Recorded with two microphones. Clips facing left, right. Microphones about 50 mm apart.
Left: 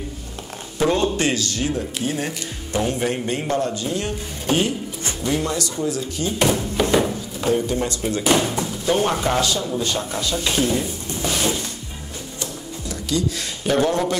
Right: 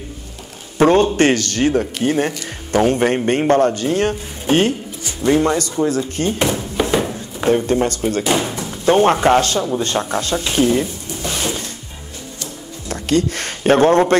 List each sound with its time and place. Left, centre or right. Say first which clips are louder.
0.7 s speech: right 7 dB; right
6.4 s a sound: left 4 dB; centre
7.3 s speech: right 6 dB; right
8.3 s speech: left 3 dB; centre
8.6 s music: right 6 dB; right
9.0 s speech: right 7 dB; right
11.2 s music: left 1 dB; centre
12.8 s speech: right 6 dB; right